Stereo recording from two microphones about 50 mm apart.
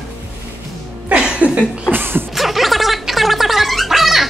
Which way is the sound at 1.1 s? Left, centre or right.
Right.